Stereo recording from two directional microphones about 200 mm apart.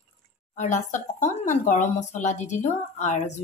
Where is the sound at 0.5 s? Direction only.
35° left (ahead or behind).